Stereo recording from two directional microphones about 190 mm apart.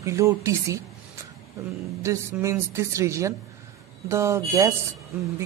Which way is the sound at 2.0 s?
15° right (ahead or behind).